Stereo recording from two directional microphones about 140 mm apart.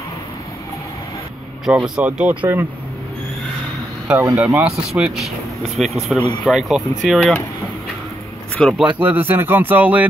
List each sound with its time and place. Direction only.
1.7 s speech: 10° right (ahead or behind)
4.1 s speech: 15° right (ahead or behind)
8.7 s speech: 10° right (ahead or behind)